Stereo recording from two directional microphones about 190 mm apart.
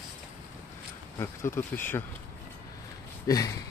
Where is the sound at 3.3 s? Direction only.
20° left (ahead or behind).